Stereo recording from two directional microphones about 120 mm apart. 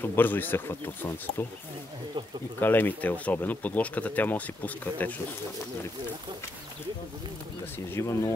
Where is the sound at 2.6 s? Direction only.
15° left (ahead or behind).